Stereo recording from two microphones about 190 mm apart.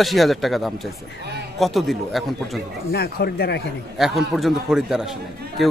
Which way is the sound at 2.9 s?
55° left (ahead or behind).